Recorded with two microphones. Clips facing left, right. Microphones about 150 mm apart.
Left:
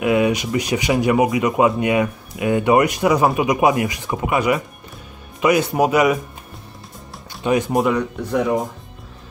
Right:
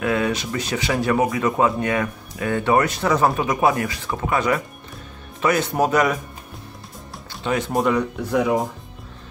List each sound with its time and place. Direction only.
0.0 s speech: 15° left (ahead or behind)
7.4 s speech: 15° left (ahead or behind)
7.7 s speech: centre (ahead or behind)